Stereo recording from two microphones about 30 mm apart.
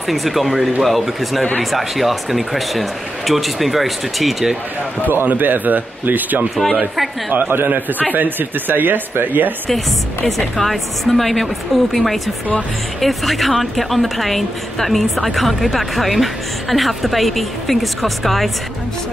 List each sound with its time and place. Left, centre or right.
0.0 s a woman's voice: centre
5.0 s a man's voice: right
6.5 s a woman's voice: centre
7.3 s a man's voice: right
10.2 s a woman's voice: centre